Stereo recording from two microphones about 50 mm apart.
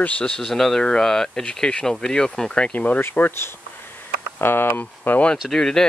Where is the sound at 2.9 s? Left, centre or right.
Left.